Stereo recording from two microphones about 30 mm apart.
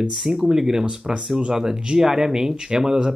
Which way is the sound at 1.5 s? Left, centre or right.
Right.